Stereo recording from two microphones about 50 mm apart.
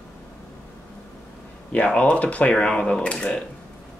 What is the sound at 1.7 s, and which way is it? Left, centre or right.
Speech, left.